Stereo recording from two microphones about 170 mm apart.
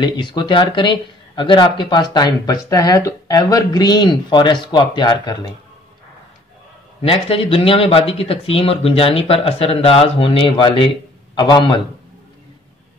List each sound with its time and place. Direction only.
0.0 s speech: 25° left (ahead or behind)
7.0 s speech: 35° left (ahead or behind)